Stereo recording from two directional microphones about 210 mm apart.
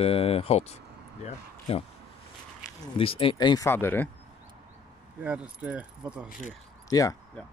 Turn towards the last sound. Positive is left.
turn(degrees=15)  # may be behind; listen again after turning